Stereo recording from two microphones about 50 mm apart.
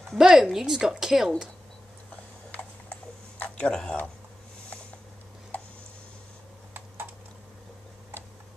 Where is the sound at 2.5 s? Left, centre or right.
Left.